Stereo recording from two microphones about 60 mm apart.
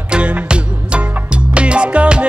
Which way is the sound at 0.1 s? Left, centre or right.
Centre.